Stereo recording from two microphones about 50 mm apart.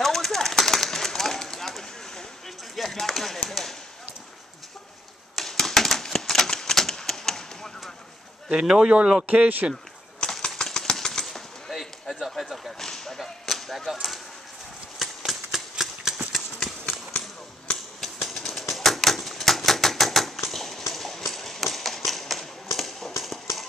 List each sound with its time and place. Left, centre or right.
0.0 s a sound: centre
5.3 s typewriter: centre
8.5 s speech: centre
10.2 s engine: centre
11.2 s basketball bounce: centre
12.3 s speech: centre
12.8 s whip: centre
15.0 s a sound: centre
16.3 s engine: centre
18.3 s typewriter: centre
20.4 s clip-clop: centre
22.8 s a sound: centre